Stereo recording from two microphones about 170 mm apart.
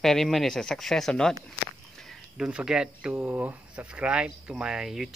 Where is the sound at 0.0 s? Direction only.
Centre (ahead or behind).